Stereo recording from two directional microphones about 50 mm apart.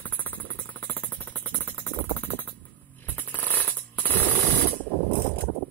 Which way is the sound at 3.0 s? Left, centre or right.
Left.